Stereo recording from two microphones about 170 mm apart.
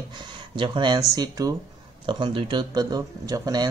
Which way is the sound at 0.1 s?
25° right (ahead or behind).